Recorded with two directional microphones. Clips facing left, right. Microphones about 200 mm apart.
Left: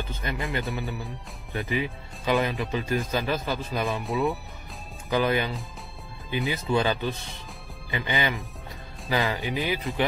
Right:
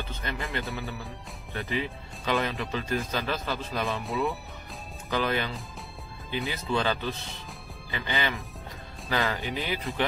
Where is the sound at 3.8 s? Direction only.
Centre (ahead or behind).